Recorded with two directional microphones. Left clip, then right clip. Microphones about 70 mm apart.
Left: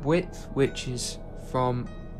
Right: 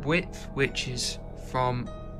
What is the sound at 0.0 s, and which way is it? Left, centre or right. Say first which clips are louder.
Speech: left 2 dB; left.